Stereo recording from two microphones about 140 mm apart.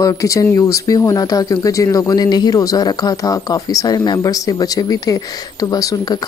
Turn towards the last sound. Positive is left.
turn(degrees=25)  # may be behind; listen again after turning